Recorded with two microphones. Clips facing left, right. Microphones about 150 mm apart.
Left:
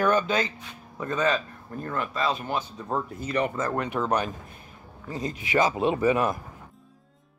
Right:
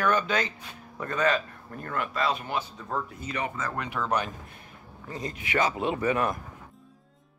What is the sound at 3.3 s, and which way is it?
Speech, 45° left (ahead or behind).